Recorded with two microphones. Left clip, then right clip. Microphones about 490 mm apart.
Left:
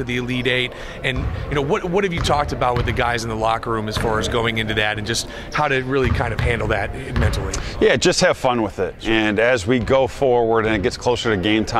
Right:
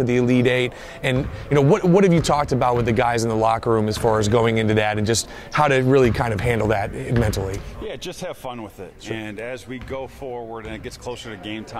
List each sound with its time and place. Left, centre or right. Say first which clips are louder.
0.0 s a man's voice: right 4 dB; right
7.8 s speech: left 18 dB; left